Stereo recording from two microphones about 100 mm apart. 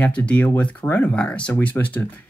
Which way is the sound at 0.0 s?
15° left (ahead or behind).